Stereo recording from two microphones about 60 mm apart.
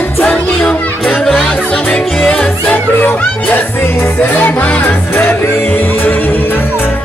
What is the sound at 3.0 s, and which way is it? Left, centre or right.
Music, left.